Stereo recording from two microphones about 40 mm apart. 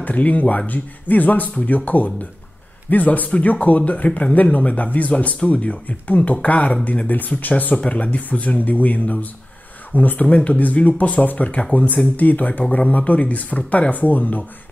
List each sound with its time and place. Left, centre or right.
0.0 s speech: left
3.3 s speech: left
7.7 s speech: left
10.2 s speech: left